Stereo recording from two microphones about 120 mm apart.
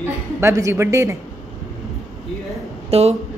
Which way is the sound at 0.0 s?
25° right (ahead or behind).